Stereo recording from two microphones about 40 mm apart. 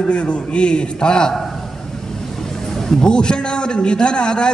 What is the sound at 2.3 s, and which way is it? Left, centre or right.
Vehicle, centre.